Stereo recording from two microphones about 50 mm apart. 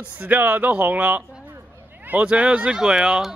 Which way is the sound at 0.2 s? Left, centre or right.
Right.